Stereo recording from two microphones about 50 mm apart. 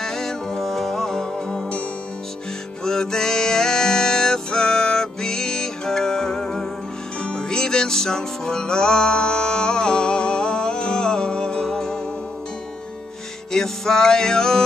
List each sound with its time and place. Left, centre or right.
0.0 s music: centre
2.8 s music: centre
13.5 s music: centre